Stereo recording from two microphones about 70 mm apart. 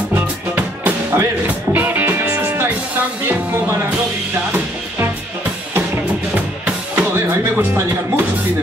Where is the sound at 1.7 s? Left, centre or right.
Right.